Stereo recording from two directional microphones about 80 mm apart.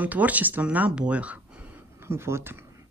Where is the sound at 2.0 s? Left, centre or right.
Right.